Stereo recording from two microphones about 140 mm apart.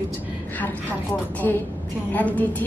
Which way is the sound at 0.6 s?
10° left (ahead or behind).